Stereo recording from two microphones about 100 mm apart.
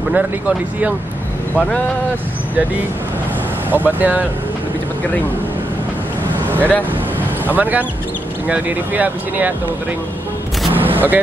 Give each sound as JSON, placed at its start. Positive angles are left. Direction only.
{"t": 0.1, "sound": "speech", "side_deg": -15}
{"t": 1.5, "sound": "speech", "side_deg": 10}
{"t": 3.7, "sound": "speech", "side_deg": -15}
{"t": 6.4, "sound": "vehicle", "side_deg": -20}
{"t": 7.4, "sound": "speech", "side_deg": -15}
{"t": 10.7, "sound": "single-lens reflex camera", "side_deg": -20}